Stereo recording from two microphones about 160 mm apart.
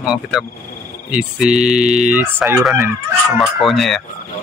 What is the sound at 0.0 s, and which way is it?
Speech, 5° right (ahead or behind).